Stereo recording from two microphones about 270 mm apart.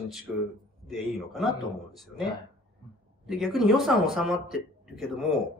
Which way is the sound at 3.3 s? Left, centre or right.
Centre.